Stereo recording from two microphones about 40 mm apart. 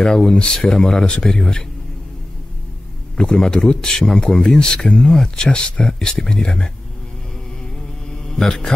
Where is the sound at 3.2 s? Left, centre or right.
Centre.